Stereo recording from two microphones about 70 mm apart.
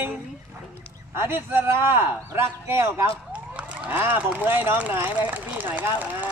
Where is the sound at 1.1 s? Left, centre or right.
Right.